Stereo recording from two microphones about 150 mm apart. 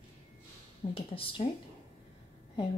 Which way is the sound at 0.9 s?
35° left (ahead or behind).